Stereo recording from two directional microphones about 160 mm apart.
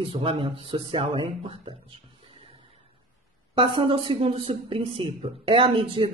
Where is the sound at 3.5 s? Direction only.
30° right (ahead or behind).